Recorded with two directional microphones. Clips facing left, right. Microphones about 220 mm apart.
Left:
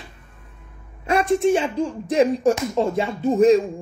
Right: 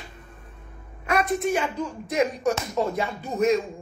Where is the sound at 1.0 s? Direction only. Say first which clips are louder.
Left 5 dB; 30° left (ahead or behind).